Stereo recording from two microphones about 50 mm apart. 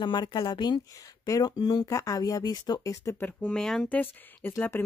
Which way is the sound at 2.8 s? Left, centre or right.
Left.